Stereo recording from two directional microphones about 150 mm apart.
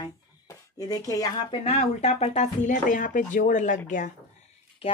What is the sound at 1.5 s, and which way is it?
Speech, 45° left (ahead or behind).